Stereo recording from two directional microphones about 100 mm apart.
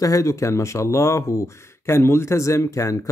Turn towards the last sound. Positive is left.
turn(degrees=30)  # may be behind; listen again after turning